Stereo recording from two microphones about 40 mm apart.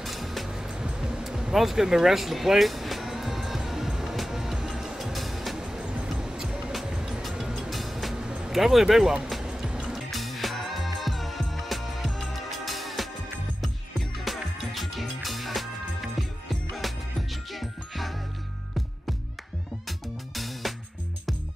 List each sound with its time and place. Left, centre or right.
0.0 s music: centre
0.5 s music: centre
5.6 s music: centre
8.5 s speech: centre
9.4 s music: centre
9.9 s music: centre
20.3 s music: centre